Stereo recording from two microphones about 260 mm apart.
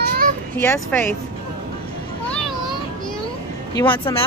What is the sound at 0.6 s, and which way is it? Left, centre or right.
Speech, centre.